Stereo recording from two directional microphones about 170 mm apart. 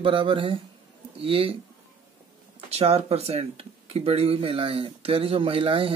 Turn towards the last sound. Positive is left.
turn(degrees=-35)  # may be behind; listen again after turning